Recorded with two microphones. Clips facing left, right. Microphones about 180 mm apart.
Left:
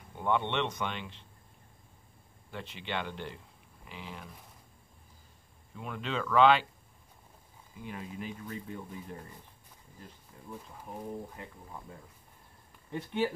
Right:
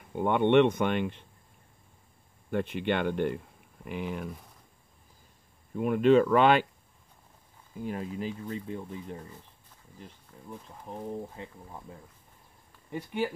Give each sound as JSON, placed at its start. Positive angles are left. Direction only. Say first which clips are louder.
{"t": 0.1, "sound": "speech", "louder": "right 8 dB", "side_deg": -55}
{"t": 2.5, "sound": "speech", "louder": "right 9 dB", "side_deg": -55}
{"t": 5.8, "sound": "speech", "louder": "right 15 dB", "side_deg": -50}
{"t": 7.8, "sound": "speech", "louder": "right 7 dB", "side_deg": -45}
{"t": 10.9, "sound": "speech", "louder": "right 3 dB", "side_deg": -20}
{"t": 12.9, "sound": "speech", "louder": "even", "side_deg": -10}